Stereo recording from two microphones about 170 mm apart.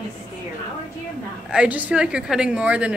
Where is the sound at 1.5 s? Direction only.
5° right (ahead or behind).